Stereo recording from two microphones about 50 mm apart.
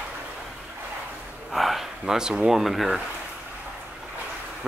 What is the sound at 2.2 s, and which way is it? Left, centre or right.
Speech, centre.